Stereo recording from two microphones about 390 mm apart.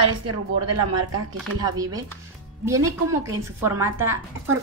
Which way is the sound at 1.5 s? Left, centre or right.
Centre.